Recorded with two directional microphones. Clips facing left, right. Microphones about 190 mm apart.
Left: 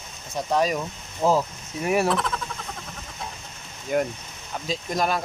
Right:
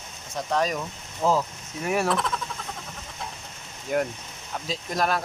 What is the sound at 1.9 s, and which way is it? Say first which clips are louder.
Speech: left 2 dB; 5° left (ahead or behind).